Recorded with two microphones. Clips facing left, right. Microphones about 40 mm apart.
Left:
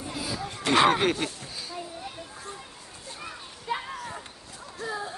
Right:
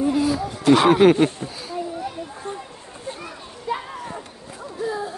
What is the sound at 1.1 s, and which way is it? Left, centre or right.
Speech, right.